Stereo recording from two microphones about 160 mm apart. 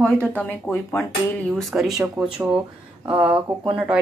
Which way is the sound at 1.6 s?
Centre (ahead or behind).